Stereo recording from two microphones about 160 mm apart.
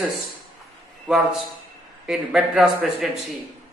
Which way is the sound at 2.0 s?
Centre (ahead or behind).